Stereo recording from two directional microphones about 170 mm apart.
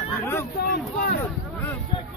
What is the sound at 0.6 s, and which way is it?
Speech, 65° left (ahead or behind).